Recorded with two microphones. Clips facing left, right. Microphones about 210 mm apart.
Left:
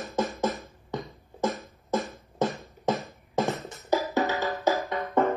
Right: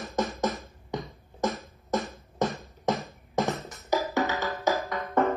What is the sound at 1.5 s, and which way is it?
Music, centre (ahead or behind).